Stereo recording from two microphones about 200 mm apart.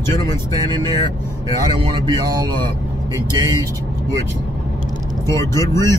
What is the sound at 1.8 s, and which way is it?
Speech, 20° right (ahead or behind).